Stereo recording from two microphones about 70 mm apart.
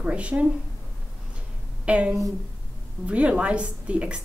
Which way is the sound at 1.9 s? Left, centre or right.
Centre.